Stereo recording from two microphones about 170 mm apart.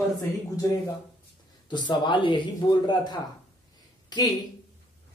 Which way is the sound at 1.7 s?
25° left (ahead or behind).